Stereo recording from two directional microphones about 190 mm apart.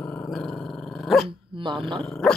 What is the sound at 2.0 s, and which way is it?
Dog, 5° left (ahead or behind).